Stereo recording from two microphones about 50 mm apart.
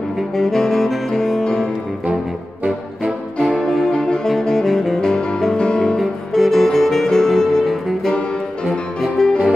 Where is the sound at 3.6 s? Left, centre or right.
Centre.